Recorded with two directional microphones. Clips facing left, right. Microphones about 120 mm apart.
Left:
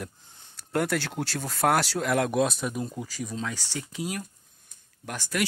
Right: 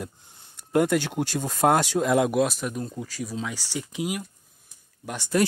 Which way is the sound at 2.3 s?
Centre (ahead or behind).